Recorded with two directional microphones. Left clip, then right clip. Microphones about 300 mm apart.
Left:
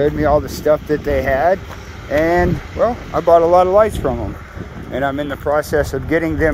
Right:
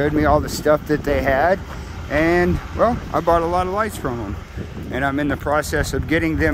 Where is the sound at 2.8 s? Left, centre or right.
Centre.